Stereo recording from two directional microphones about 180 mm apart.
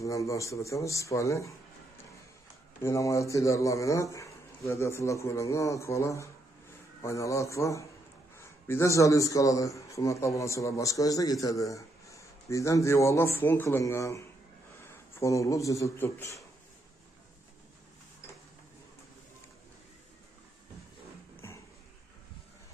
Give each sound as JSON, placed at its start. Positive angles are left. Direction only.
{"t": 0.0, "sound": "a man's voice", "side_deg": 15}
{"t": 2.8, "sound": "a man's voice", "side_deg": 15}